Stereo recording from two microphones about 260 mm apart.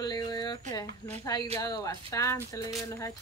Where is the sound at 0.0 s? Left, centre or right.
Centre.